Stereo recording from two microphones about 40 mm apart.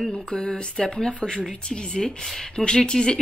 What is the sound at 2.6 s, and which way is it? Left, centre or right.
Speech, centre.